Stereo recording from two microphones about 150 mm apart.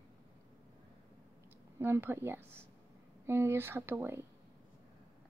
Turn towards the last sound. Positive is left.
turn(degrees=-15)  # may be behind; listen again after turning